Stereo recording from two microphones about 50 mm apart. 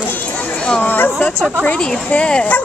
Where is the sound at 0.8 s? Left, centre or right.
Left.